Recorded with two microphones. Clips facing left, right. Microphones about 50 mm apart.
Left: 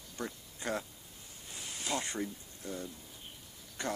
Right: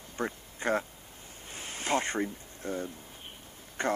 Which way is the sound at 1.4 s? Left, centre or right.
Right.